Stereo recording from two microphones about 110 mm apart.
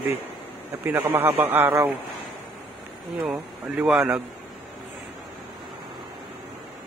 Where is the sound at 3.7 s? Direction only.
10° right (ahead or behind).